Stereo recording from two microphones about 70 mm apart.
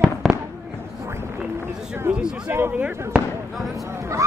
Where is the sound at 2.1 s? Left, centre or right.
Right.